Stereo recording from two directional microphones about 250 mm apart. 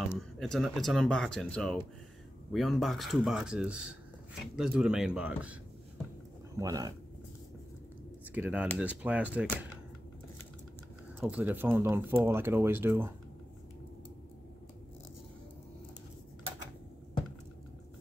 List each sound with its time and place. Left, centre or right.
0.1 s speech: centre
6.6 s speech: centre
8.4 s speech: centre
11.1 s speech: centre